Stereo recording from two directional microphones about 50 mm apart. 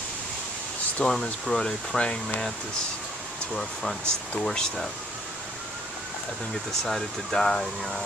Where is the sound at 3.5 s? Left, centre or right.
Centre.